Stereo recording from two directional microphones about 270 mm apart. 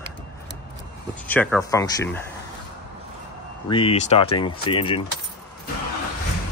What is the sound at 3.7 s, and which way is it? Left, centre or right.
Speech, centre.